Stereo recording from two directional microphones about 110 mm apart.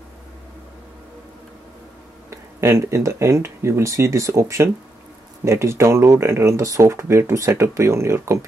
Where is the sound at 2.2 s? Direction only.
25° right (ahead or behind).